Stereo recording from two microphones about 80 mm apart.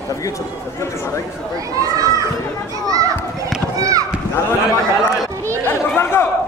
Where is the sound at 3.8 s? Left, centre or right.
Right.